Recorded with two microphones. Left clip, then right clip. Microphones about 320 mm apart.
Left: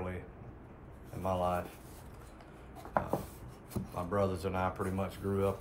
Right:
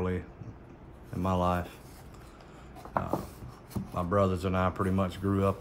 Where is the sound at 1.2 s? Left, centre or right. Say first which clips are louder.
Right 3 dB; right.